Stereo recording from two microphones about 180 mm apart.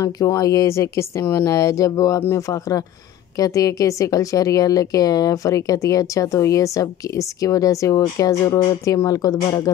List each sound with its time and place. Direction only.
0.0 s a woman's voice: 20° left (ahead or behind)